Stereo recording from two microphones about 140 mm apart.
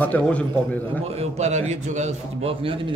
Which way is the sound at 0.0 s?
10° left (ahead or behind).